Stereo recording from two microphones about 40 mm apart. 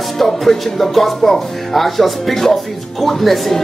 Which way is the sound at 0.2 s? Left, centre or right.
Centre.